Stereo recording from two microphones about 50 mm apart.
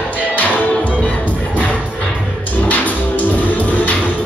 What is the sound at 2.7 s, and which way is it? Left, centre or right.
Music, left.